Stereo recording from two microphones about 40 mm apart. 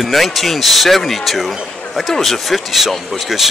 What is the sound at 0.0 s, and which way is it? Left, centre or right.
Speech, centre.